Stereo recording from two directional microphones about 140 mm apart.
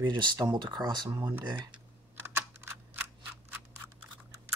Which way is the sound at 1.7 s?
15° right (ahead or behind).